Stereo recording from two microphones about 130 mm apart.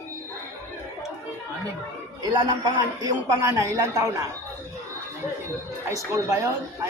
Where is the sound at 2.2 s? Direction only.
35° right (ahead or behind).